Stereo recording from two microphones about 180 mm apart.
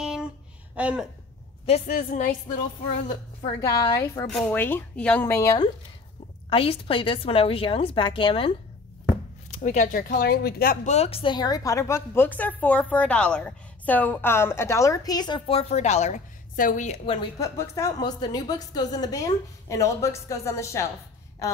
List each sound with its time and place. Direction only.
0.7 s speech: 5° right (ahead or behind)
1.9 s speech: 50° left (ahead or behind)
3.1 s a woman's voice: 20° left (ahead or behind)
4.3 s a woman's voice: 5° left (ahead or behind)
6.5 s a woman's voice: 30° left (ahead or behind)
9.6 s speech: 45° left (ahead or behind)
10.9 s a woman's voice: 35° left (ahead or behind)
17.4 s a woman's voice: 15° left (ahead or behind)